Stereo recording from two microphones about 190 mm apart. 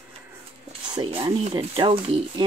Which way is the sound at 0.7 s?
25° right (ahead or behind).